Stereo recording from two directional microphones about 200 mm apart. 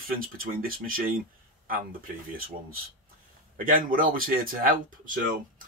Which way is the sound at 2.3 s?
45° right (ahead or behind).